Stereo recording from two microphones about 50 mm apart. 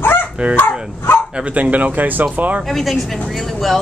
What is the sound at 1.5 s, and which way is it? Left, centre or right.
Speech, right.